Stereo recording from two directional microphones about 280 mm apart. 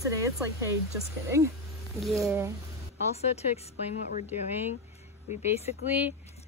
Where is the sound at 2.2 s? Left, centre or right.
Centre.